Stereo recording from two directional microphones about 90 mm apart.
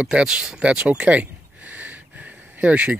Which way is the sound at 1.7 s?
20° right (ahead or behind).